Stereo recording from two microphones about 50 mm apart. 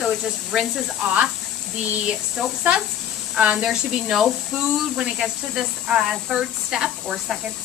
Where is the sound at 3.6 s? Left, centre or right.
Centre.